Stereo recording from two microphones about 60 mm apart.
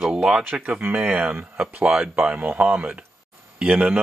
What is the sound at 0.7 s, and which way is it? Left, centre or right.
Speech, right.